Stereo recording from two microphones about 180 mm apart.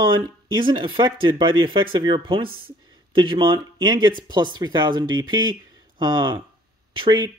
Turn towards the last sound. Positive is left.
turn(degrees=-25)  # may be behind; listen again after turning